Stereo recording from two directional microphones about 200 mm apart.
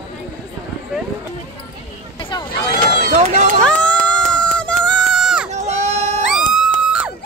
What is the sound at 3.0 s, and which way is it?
Run, 40° right (ahead or behind).